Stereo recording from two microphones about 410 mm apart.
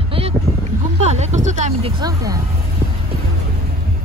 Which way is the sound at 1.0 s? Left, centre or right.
Centre.